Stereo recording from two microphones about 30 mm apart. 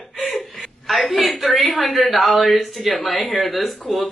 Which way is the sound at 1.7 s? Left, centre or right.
Centre.